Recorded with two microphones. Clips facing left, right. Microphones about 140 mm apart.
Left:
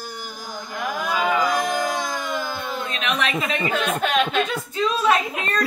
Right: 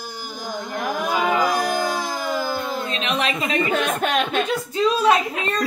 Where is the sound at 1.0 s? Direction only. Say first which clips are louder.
Right 1 dB; 25° right (ahead or behind).